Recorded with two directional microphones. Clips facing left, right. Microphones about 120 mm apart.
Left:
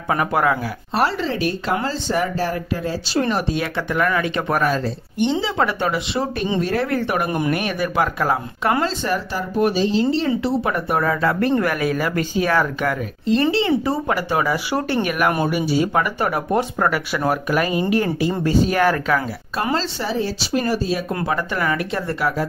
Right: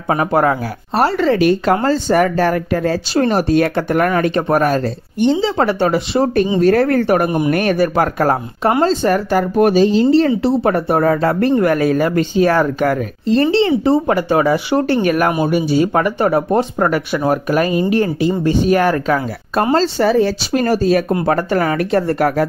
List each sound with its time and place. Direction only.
0.1 s speech: 35° right (ahead or behind)
1.0 s speech: 60° right (ahead or behind)
3.3 s speech: 45° right (ahead or behind)
5.4 s speech: 30° right (ahead or behind)
6.6 s speech: 55° right (ahead or behind)
7.2 s speech: 20° right (ahead or behind)
7.5 s speech: 45° right (ahead or behind)
8.6 s speech: 30° right (ahead or behind)
9.0 s speech: 60° right (ahead or behind)
10.4 s speech: 40° right (ahead or behind)
17.6 s speech: 20° left (ahead or behind)
17.9 s speech: 35° right (ahead or behind)
19.6 s speech: 40° right (ahead or behind)
20.0 s speech: 60° right (ahead or behind)